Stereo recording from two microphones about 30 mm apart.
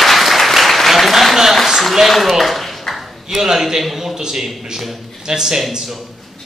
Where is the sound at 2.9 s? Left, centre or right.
Centre.